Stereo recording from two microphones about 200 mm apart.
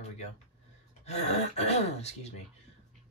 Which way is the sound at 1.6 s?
35° left (ahead or behind).